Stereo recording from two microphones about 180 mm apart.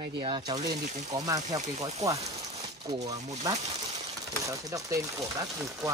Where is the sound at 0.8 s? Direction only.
40° right (ahead or behind).